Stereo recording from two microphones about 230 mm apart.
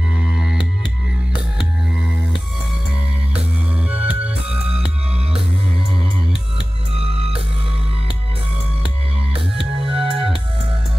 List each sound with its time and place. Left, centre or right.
0.2 s music: centre
3.9 s music: centre
7.0 s music: right
9.6 s music: centre